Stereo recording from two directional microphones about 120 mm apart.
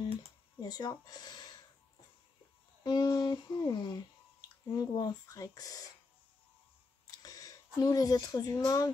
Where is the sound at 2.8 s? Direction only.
35° left (ahead or behind).